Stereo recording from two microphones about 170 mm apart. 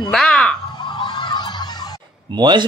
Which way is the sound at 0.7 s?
25° left (ahead or behind).